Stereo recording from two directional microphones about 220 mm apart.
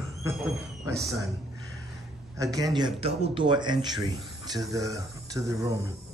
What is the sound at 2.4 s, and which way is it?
Speech, 15° right (ahead or behind).